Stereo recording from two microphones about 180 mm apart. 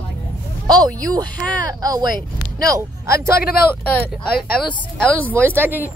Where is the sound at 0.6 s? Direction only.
20° right (ahead or behind).